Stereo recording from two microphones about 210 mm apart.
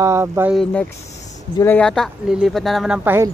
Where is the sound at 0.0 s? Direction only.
15° right (ahead or behind).